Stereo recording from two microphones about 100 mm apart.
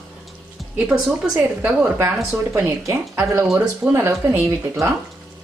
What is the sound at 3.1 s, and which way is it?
Speech, 25° right (ahead or behind).